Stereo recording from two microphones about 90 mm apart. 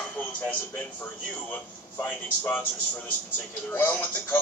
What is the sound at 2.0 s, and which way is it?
Speech, 20° left (ahead or behind).